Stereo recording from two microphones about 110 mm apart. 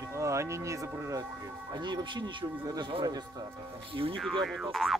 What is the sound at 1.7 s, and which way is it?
Speech, 45° right (ahead or behind).